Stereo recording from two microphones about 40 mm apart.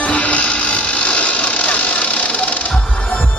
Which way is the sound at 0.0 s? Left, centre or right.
Left.